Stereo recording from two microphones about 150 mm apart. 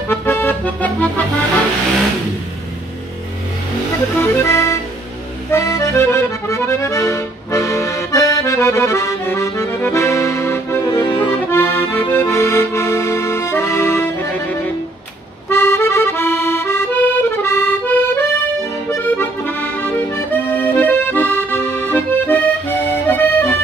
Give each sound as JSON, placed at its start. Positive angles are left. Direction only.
{"t": 0.1, "sound": "accordion", "side_deg": 15}
{"t": 4.2, "sound": "accordion", "side_deg": 20}